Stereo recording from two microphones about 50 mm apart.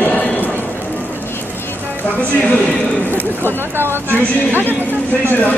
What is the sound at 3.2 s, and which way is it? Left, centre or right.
Speech, right.